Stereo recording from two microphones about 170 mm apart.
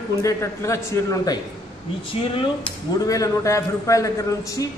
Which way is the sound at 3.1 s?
20° left (ahead or behind).